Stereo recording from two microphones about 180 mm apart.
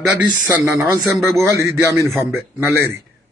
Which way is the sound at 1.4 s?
15° right (ahead or behind).